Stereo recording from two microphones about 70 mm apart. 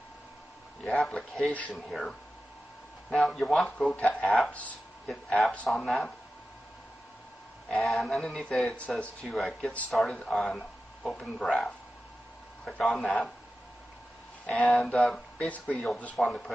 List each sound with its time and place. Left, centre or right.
0.8 s a man's voice: centre
1.5 s speech: centre
1.8 s a sound: centre
3.1 s speech: centre
5.8 s speech: centre
7.7 s a sound: centre
8.6 s speech: centre
9.0 s speech: centre
9.9 s a sound: centre
11.1 s speech: centre
14.4 s speech: centre
16.2 s a sound: centre